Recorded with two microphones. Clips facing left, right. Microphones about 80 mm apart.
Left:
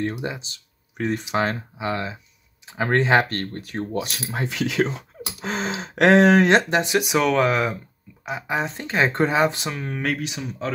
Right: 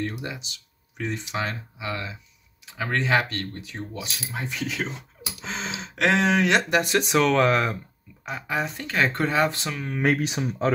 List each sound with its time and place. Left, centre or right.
0.0 s speech: left
0.4 s speech: left
4.5 s speech: left
5.4 s speech: left
6.7 s speech: centre
8.3 s speech: centre
10.2 s speech: right